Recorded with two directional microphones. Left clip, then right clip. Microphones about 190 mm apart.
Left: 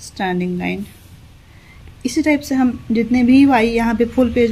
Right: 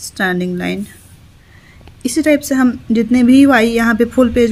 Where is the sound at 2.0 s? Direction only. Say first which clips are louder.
Right 4 dB; 25° right (ahead or behind).